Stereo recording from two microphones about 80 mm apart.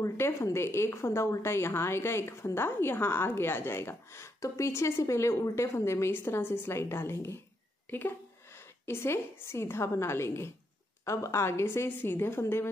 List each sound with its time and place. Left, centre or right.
0.0 s a woman's voice: left
8.8 s a woman's voice: left